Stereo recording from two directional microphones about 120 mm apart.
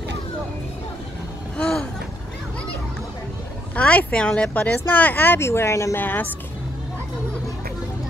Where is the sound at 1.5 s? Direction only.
10° left (ahead or behind).